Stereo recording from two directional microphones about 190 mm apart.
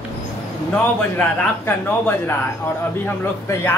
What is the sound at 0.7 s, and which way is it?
A man's voice, 5° left (ahead or behind).